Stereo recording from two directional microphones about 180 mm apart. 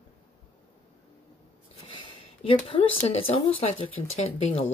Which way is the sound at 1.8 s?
30° left (ahead or behind).